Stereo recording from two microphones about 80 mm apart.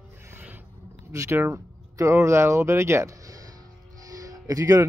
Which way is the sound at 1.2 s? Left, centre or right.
Right.